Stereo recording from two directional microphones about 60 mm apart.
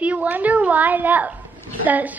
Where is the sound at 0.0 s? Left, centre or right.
Right.